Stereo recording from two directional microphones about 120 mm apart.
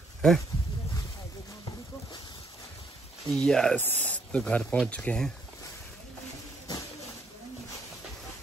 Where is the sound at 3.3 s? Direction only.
5° left (ahead or behind).